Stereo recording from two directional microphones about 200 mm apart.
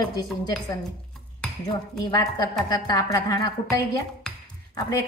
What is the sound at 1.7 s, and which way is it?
A woman's voice, 20° left (ahead or behind).